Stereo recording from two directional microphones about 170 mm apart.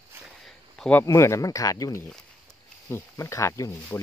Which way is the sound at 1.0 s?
15° left (ahead or behind).